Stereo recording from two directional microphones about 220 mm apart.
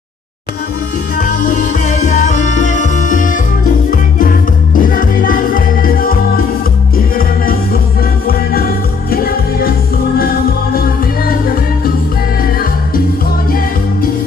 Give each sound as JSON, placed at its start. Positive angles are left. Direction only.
{"t": 1.1, "sound": "music", "side_deg": 40}
{"t": 10.7, "sound": "music", "side_deg": 40}